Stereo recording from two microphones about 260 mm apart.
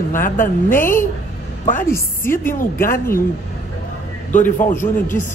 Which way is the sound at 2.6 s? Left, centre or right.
Left.